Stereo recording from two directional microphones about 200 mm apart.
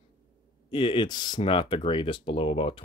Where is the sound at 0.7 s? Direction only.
25° left (ahead or behind).